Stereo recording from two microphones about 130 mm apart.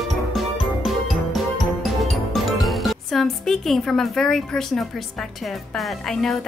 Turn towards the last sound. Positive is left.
turn(degrees=5)  # may be behind; listen again after turning